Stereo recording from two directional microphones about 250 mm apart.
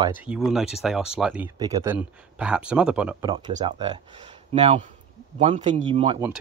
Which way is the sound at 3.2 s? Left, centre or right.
Centre.